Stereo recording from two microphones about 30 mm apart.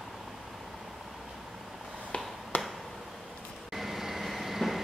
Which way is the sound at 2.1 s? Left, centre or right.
Left.